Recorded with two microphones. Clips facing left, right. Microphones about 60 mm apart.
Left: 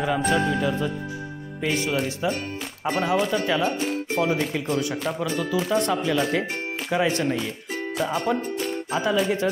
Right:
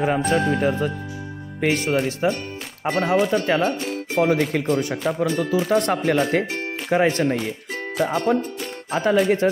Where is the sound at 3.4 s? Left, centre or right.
Right.